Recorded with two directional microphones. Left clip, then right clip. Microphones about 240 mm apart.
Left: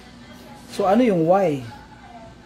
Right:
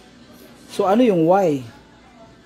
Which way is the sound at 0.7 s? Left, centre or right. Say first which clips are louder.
Right 2 dB; right.